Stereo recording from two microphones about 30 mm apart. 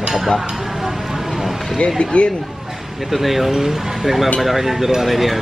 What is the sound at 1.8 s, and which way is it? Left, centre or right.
Speech, left.